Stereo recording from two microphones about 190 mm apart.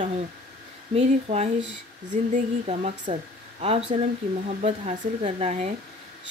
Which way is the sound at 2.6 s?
30° right (ahead or behind).